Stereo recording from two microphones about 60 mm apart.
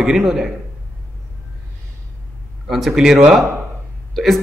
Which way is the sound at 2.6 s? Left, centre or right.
Centre.